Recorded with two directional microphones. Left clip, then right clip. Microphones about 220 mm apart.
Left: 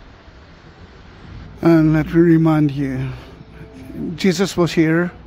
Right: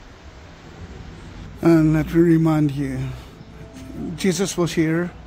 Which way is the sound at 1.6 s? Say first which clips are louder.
Left 2 dB; 10° left (ahead or behind).